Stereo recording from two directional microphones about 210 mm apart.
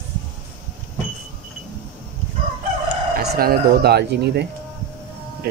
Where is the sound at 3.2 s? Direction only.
50° right (ahead or behind).